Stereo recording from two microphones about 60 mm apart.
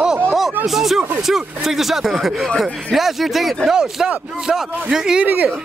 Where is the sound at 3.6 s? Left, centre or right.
Centre.